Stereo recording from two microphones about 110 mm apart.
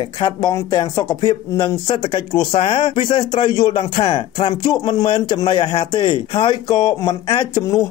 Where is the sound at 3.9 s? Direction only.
55° left (ahead or behind).